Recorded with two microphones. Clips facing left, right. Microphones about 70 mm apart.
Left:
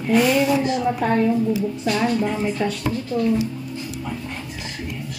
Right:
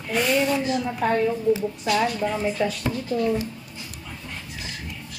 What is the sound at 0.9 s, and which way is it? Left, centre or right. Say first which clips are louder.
Speech: left 1 dB; centre.